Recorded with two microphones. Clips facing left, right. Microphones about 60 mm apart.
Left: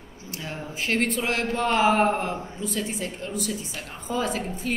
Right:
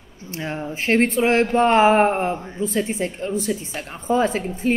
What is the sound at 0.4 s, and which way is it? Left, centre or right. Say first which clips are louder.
A woman's voice: right 6 dB; right.